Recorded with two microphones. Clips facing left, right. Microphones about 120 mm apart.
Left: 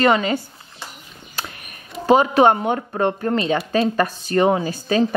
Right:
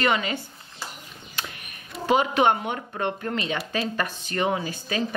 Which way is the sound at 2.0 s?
40° left (ahead or behind).